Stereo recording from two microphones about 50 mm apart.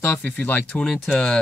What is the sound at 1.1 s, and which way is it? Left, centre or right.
Speech, centre.